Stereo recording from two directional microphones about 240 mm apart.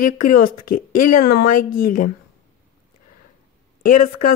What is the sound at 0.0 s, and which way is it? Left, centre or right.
Speech, left.